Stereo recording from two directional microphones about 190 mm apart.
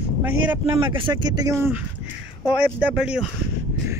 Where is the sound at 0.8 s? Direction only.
25° right (ahead or behind).